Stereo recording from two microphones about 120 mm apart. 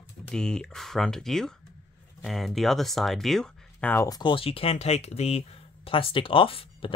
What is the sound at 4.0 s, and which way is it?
Speech, 35° left (ahead or behind).